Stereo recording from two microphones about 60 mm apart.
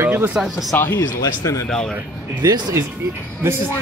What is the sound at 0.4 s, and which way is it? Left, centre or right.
Speech, centre.